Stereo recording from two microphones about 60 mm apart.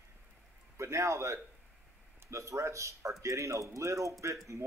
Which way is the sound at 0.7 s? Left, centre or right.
Right.